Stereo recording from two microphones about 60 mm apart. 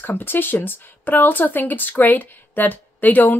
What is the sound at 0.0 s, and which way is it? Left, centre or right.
Speech, left.